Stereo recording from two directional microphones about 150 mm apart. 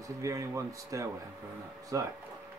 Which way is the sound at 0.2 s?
20° right (ahead or behind).